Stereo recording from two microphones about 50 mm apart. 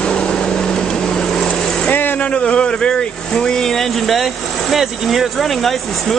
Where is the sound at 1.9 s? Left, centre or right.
Left.